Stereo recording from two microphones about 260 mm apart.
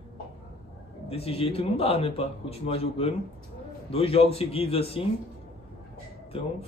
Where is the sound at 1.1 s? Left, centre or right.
Left.